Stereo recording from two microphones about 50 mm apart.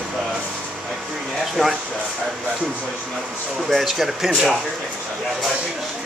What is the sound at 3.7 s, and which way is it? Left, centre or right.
Speech, centre.